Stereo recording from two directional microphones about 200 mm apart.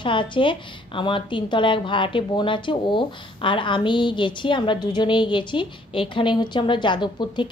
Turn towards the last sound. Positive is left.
turn(degrees=20)  # may be behind; listen again after turning